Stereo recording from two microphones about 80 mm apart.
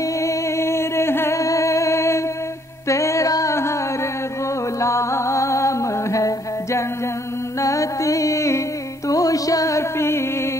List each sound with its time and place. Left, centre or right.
0.0 s music: left
3.5 s singing: left
4.7 s music: left